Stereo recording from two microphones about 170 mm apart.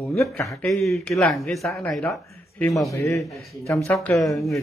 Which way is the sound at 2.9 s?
20° left (ahead or behind).